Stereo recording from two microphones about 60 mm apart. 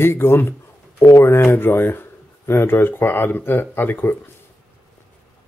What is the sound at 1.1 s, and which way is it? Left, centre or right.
Speech, left.